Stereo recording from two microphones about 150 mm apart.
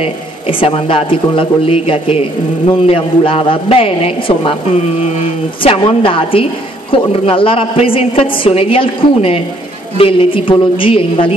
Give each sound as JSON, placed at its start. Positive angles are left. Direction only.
{"t": 0.0, "sound": "speech", "side_deg": 40}
{"t": 5.6, "sound": "speech", "side_deg": 35}